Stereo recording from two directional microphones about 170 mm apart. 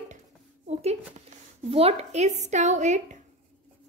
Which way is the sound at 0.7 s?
40° right (ahead or behind).